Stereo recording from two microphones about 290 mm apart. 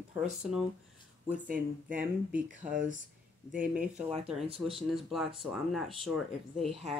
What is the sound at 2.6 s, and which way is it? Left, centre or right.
Speech, right.